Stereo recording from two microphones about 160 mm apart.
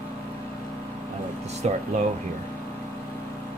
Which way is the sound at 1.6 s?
45° right (ahead or behind).